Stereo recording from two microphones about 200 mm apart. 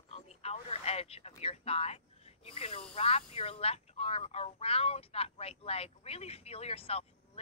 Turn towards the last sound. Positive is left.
turn(degrees=30)  # may be behind; listen again after turning